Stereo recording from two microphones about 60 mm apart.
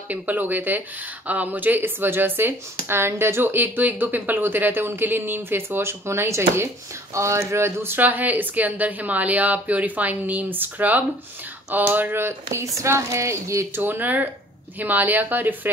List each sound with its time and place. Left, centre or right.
0.1 s speech: right
8.0 s a woman's voice: right
12.6 s speech: right
13.7 s speech: right